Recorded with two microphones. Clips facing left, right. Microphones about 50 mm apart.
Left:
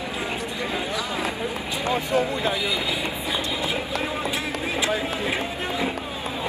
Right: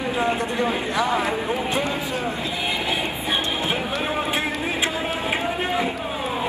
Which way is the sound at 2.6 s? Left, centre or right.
Right.